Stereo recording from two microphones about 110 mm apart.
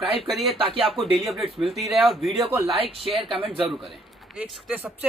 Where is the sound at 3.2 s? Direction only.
55° right (ahead or behind).